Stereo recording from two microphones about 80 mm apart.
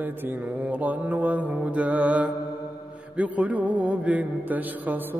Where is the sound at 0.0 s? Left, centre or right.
Right.